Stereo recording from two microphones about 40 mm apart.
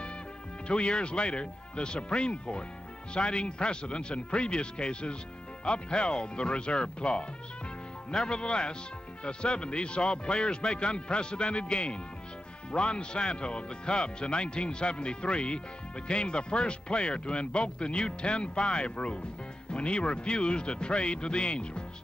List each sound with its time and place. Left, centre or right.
0.7 s speech: left